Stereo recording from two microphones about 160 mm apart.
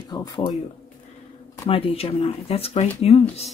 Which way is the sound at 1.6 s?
40° left (ahead or behind).